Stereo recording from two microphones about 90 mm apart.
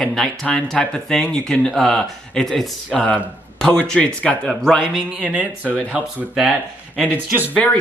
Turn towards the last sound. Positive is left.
turn(degrees=-20)  # may be behind; listen again after turning